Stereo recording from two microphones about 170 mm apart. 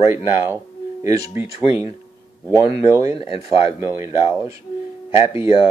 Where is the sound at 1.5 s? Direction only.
35° left (ahead or behind).